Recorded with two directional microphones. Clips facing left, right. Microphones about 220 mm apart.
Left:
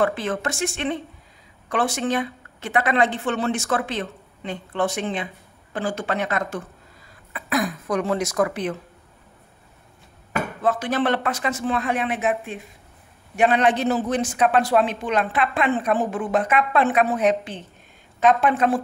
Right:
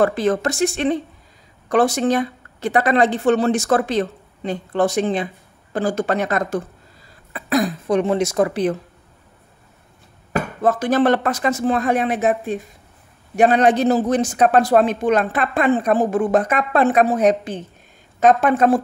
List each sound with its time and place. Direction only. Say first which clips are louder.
0.0 s speech: right 5 dB; 40° right (ahead or behind)
10.3 s speech: right 4 dB; 45° right (ahead or behind)